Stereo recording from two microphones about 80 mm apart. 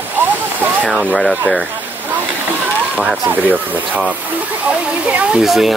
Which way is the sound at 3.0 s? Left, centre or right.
Right.